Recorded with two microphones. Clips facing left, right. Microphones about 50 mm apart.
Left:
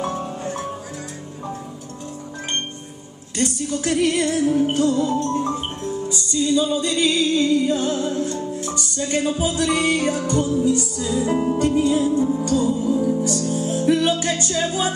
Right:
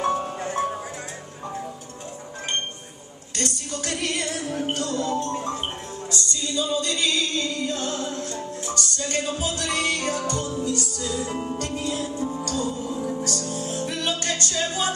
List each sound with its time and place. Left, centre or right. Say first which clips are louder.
0.0 s music: right 2 dB; centre
0.4 s music: right 2 dB; right
3.3 s music: left 7 dB; centre
4.7 s music: left 6 dB; centre